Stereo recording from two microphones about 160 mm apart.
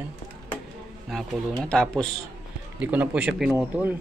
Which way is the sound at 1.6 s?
5° left (ahead or behind).